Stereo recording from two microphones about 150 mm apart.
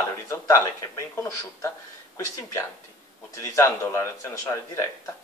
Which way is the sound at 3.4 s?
20° left (ahead or behind).